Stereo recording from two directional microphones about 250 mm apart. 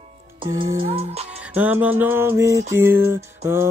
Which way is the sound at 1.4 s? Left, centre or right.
Centre.